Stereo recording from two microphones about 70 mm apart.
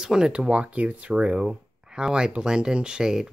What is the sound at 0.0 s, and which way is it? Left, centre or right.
Speech, centre.